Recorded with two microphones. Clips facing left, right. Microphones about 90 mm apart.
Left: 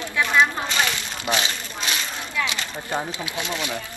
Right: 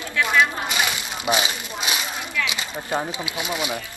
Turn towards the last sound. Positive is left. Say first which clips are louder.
# right 1 dB
turn(degrees=-15)  # may be behind; listen again after turning